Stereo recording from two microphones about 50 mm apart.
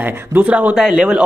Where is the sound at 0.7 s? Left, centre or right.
Centre.